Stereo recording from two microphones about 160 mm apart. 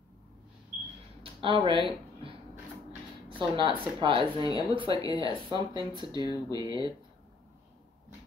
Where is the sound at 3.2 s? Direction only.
30° right (ahead or behind).